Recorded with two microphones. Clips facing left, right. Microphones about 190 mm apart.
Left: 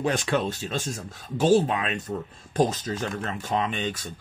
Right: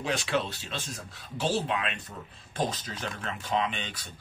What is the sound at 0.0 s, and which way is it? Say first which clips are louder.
Speech: left 5 dB; 50° left (ahead or behind).